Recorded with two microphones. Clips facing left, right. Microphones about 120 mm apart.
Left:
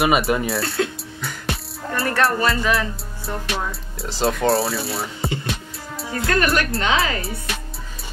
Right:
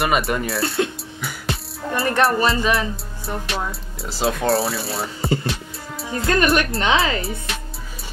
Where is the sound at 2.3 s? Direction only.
20° right (ahead or behind).